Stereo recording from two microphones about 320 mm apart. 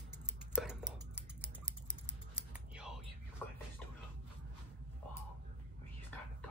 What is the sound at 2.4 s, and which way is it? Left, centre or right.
Typing, centre.